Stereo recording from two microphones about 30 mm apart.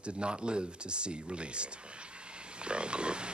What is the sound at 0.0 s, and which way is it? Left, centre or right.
A man's voice, right.